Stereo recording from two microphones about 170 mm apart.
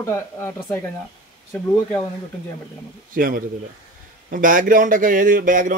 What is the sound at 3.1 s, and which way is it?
Speech, 55° right (ahead or behind).